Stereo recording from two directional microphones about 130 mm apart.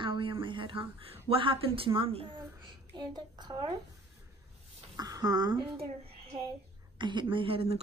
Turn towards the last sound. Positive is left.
turn(degrees=-45)  # may be behind; listen again after turning